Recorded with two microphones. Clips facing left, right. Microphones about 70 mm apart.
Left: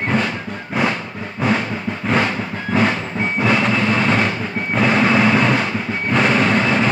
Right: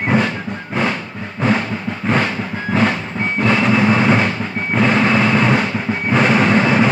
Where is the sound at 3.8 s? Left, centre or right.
Centre.